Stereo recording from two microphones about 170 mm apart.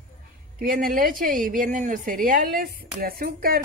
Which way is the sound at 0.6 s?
55° right (ahead or behind).